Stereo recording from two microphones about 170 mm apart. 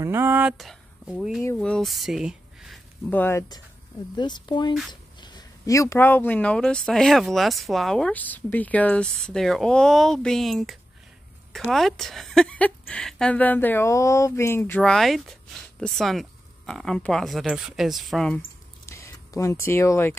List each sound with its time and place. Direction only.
0.0 s speech: 15° right (ahead or behind)
3.1 s speech: 15° left (ahead or behind)
18.9 s speech: 15° left (ahead or behind)